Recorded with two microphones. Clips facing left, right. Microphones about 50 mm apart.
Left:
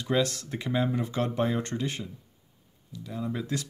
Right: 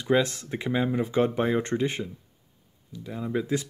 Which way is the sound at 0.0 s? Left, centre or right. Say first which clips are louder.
Right 3 dB; right.